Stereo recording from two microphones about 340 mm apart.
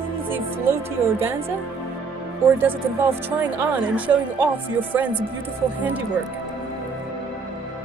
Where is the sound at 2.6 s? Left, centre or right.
Centre.